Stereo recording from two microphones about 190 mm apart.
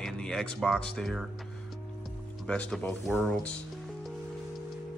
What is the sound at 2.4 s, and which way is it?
Speech, 5° left (ahead or behind).